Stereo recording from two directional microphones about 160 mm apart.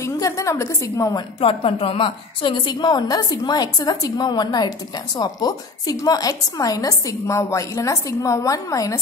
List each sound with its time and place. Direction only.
0.0 s a woman's voice: 20° left (ahead or behind)
1.4 s a woman's voice: 35° left (ahead or behind)